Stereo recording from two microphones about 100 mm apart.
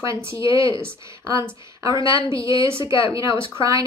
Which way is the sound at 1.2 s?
30° right (ahead or behind).